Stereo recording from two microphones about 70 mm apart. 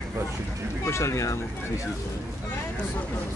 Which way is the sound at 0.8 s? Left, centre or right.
Left.